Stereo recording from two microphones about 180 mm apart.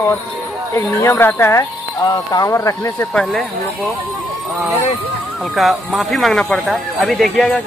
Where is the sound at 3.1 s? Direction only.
5° left (ahead or behind).